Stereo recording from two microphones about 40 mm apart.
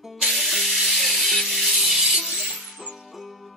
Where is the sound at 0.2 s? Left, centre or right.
Centre.